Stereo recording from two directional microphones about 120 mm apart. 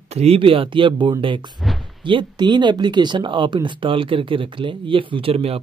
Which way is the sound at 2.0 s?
40° right (ahead or behind).